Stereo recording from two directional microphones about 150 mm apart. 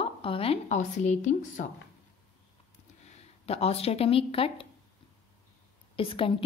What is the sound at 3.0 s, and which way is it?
Speech, 45° left (ahead or behind).